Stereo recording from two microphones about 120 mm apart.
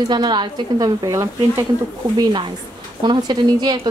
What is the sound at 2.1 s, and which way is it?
A woman's voice, 40° right (ahead or behind).